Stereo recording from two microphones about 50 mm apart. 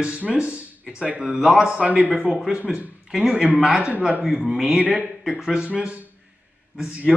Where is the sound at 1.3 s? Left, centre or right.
Centre; by 3.6 s right.